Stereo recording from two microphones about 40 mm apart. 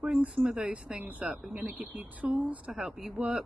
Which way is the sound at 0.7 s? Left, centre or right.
Right.